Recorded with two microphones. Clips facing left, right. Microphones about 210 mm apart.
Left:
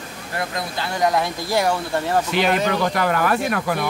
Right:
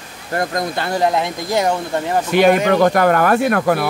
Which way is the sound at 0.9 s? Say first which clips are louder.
Right 2 dB; 25° right (ahead or behind).